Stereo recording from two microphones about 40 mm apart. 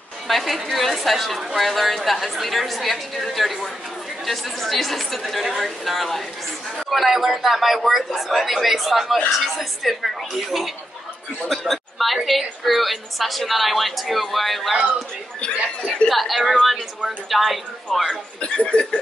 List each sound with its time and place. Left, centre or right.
0.3 s a woman's voice: centre
16.1 s a woman's voice: centre
17.9 s speech: centre
18.4 s speech: left